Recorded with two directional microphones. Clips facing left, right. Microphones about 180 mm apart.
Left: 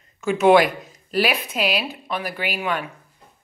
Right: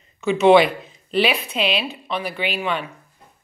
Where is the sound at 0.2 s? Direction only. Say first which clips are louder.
Right 2 dB; 5° left (ahead or behind).